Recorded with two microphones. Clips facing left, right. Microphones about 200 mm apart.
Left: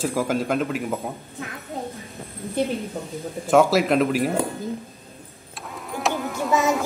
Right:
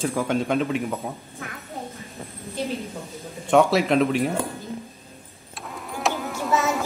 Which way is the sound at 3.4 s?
Centre (ahead or behind).